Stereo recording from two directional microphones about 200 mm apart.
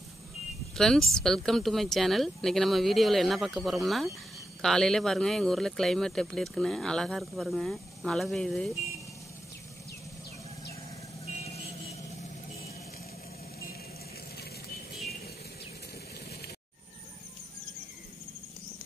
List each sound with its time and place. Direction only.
0.7 s speech: centre (ahead or behind)
14.3 s music: 50° left (ahead or behind)
16.3 s a sound: 55° left (ahead or behind)